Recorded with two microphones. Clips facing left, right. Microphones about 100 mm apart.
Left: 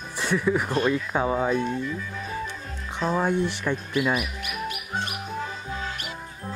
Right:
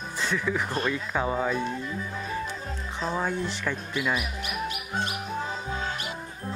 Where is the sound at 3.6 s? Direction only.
15° left (ahead or behind).